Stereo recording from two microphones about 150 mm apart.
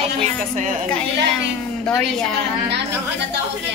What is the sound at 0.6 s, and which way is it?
Speech, 55° right (ahead or behind).